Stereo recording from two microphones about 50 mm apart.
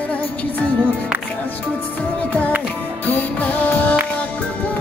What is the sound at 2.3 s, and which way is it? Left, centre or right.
Music, left.